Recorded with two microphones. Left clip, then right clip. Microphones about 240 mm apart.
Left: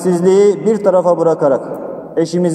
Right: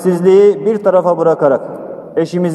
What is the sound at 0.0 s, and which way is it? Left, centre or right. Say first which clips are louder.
A man's voice: right 2 dB; right.